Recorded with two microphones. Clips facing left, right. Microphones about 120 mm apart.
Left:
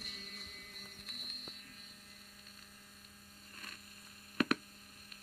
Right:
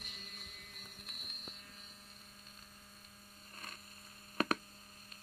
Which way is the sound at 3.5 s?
35° right (ahead or behind).